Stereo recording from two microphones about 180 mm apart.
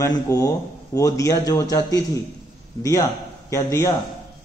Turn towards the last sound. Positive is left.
turn(degrees=20)  # may be behind; listen again after turning